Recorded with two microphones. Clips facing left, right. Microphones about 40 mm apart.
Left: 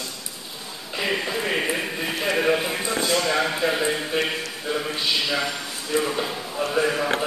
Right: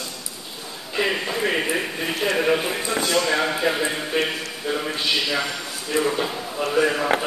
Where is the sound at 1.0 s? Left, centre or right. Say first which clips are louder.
Right 1 dB; centre.